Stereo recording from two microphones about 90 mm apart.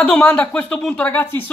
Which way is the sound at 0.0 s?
15° left (ahead or behind).